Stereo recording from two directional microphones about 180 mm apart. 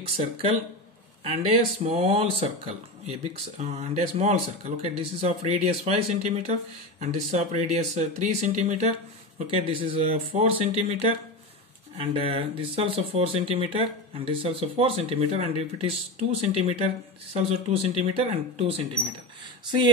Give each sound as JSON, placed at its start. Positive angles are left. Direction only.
{"t": 1.2, "sound": "speech", "side_deg": -35}